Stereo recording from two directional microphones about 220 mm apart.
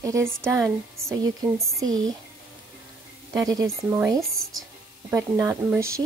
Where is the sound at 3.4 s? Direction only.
15° right (ahead or behind).